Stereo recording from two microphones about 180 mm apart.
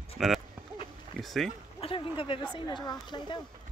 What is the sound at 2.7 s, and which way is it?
Speech, 25° left (ahead or behind).